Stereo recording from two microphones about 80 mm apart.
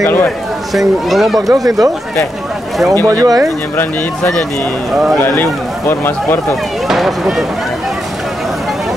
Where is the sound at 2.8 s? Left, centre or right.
Centre.